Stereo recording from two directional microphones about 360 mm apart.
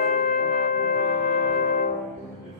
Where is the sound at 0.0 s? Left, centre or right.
Left.